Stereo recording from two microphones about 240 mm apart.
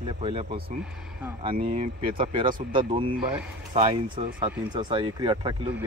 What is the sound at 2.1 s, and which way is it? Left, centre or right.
Speech, right.